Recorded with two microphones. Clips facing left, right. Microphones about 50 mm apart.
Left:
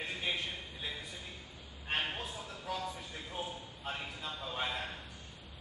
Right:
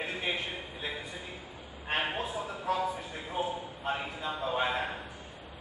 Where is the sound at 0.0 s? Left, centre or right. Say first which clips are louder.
Right 4 dB; centre.